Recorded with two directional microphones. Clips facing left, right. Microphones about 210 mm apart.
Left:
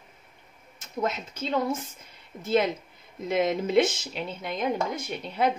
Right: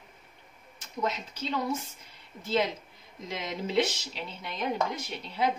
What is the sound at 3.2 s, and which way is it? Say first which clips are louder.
Speech: left 9 dB; 55° left (ahead or behind).